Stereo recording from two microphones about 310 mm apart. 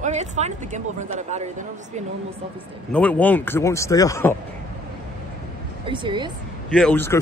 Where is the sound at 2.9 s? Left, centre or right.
Centre.